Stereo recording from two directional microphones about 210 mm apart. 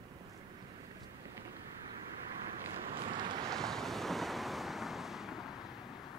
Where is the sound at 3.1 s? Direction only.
20° right (ahead or behind).